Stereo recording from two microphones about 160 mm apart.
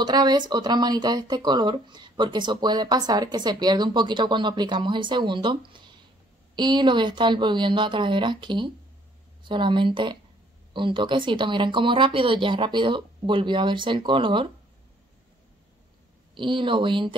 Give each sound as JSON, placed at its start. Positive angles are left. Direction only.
{"t": 0.0, "sound": "speech", "side_deg": -25}
{"t": 16.3, "sound": "speech", "side_deg": -30}